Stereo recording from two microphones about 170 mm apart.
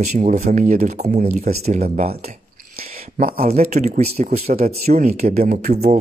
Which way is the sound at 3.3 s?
40° right (ahead or behind).